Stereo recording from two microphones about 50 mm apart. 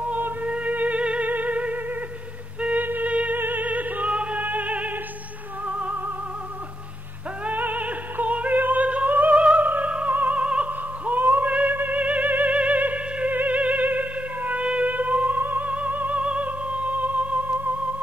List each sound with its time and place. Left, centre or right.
0.0 s music: right
7.4 s music: right
10.4 s opera: right
10.7 s music: right